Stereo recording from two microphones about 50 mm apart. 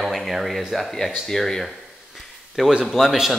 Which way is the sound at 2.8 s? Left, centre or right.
Centre.